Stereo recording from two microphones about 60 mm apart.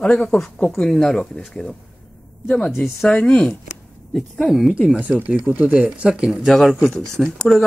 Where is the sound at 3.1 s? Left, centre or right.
Centre.